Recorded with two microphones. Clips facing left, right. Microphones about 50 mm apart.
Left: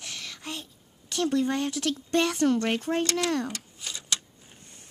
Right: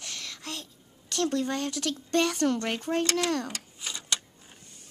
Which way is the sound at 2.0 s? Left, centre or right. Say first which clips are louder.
Even; left.